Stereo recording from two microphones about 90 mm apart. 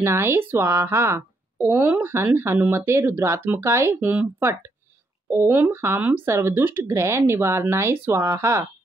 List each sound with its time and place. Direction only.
0.0 s speech: 30° right (ahead or behind)